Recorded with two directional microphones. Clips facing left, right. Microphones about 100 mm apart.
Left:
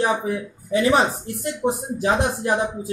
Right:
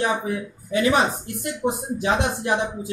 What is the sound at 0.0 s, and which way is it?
Speech, 30° left (ahead or behind).